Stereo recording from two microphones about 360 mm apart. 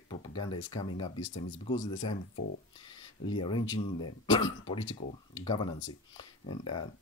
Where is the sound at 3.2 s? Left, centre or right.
Centre.